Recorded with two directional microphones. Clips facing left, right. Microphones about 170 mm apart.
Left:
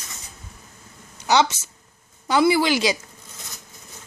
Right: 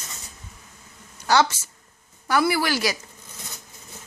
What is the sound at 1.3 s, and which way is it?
A woman's voice, 20° left (ahead or behind).